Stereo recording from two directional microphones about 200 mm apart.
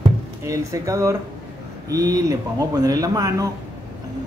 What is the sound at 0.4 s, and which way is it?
Speech, 15° right (ahead or behind).